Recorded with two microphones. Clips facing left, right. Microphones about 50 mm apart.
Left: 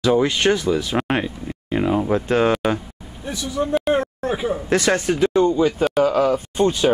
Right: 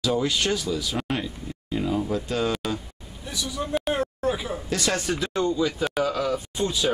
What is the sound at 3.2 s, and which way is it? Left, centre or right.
Speech, left.